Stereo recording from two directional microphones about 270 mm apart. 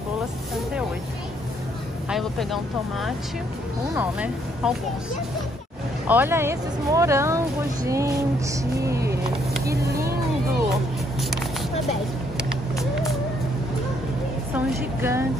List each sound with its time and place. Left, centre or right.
2.0 s speech: centre
6.0 s speech: centre
8.8 s vehicle: centre
12.4 s vehicle: centre
14.5 s a sound: centre